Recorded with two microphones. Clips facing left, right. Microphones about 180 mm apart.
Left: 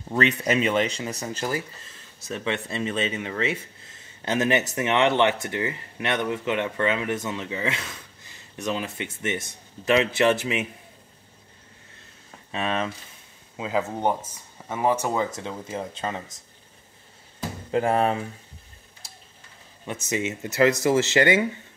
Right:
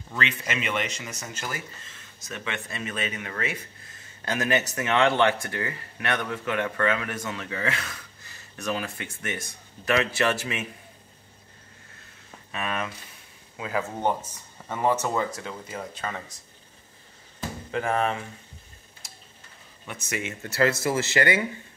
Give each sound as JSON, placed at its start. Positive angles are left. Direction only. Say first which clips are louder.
{"t": 0.1, "sound": "speech", "louder": "left 8 dB", "side_deg": 40}
{"t": 12.4, "sound": "speech", "louder": "left 4 dB", "side_deg": 25}
{"t": 17.6, "sound": "speech", "louder": "left 4 dB", "side_deg": 35}
{"t": 19.9, "sound": "speech", "louder": "left 5 dB", "side_deg": 20}